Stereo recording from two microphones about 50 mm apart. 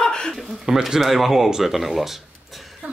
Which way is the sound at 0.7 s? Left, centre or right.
Centre.